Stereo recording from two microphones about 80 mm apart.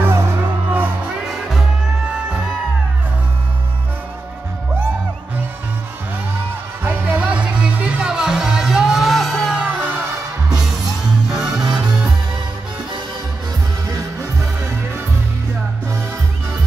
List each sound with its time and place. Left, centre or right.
0.0 s music: right
0.7 s music: right
1.2 s music: centre
6.8 s music: right; by 9.6 s centre
9.6 s music: right
11.2 s music: centre